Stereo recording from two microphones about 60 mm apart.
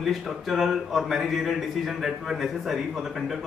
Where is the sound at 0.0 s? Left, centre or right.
Centre.